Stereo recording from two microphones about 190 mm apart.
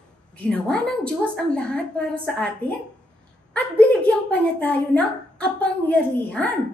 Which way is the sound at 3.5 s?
5° left (ahead or behind).